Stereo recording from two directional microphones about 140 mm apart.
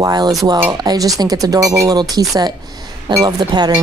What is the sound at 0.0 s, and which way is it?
A woman's voice, 30° right (ahead or behind).